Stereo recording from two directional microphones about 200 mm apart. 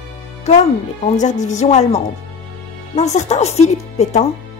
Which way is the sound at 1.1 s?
35° left (ahead or behind).